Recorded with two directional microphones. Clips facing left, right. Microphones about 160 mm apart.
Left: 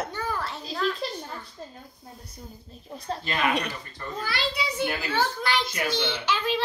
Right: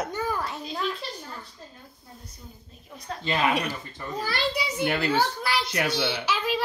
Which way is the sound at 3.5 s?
5° right (ahead or behind).